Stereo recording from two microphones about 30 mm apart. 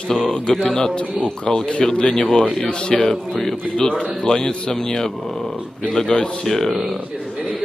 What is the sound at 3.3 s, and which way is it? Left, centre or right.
Speech, centre.